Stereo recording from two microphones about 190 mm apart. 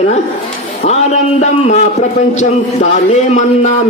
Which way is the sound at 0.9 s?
35° left (ahead or behind).